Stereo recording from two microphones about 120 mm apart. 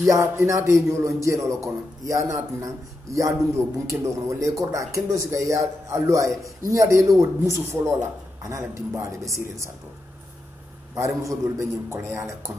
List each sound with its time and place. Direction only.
0.0 s a man's voice: 25° right (ahead or behind)
11.0 s a man's voice: 25° right (ahead or behind)